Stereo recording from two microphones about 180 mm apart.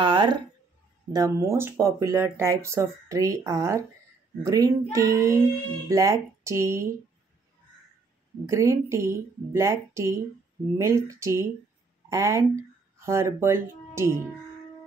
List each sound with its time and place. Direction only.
0.0 s a sound: 25° right (ahead or behind)
1.1 s speech: 15° right (ahead or behind)
8.5 s speech: 15° right (ahead or behind)